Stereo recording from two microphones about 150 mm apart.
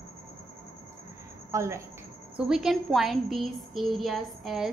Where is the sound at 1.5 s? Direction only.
20° right (ahead or behind).